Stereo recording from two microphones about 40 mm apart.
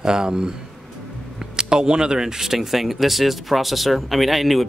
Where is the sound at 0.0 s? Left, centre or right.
Centre.